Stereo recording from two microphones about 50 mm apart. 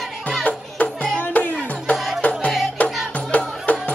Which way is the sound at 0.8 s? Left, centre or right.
Left.